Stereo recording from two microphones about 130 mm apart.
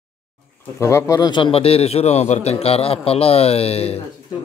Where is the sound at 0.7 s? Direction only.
20° left (ahead or behind); by 3.9 s 50° left (ahead or behind).